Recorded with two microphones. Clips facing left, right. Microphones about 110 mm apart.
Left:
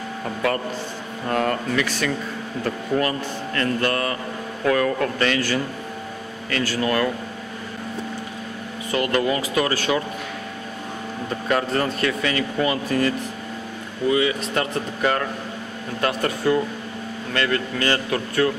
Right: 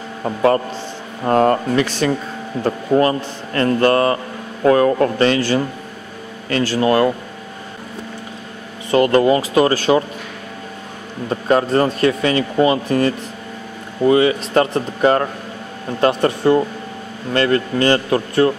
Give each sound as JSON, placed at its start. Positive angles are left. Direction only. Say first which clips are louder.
{"t": 0.2, "sound": "a man's voice", "louder": "right 8 dB", "side_deg": -30}
{"t": 8.9, "sound": "speech", "louder": "right 8 dB", "side_deg": -35}
{"t": 11.2, "sound": "speech", "louder": "right 7 dB", "side_deg": -30}
{"t": 14.0, "sound": "speech", "louder": "right 7 dB", "side_deg": -40}